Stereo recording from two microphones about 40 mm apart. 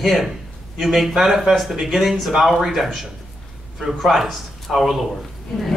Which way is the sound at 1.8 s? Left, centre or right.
Centre.